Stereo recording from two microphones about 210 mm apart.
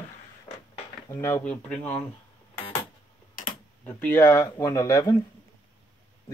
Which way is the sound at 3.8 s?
10° left (ahead or behind).